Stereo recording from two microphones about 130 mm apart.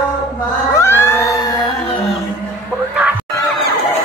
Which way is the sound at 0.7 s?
20° left (ahead or behind).